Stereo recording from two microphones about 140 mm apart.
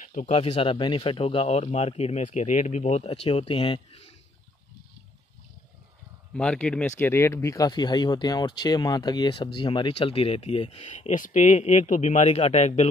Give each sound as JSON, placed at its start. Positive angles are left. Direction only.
{"t": 0.0, "sound": "a sound", "side_deg": 70}
{"t": 0.3, "sound": "speech", "side_deg": 45}
{"t": 6.3, "sound": "speech", "side_deg": 10}